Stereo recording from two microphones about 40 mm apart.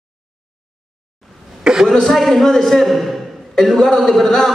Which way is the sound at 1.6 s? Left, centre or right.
Centre.